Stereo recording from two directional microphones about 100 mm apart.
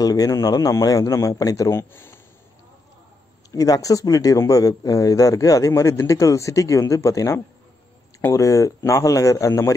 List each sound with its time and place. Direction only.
0.0 s speech: 35° left (ahead or behind)
3.5 s speech: 35° left (ahead or behind)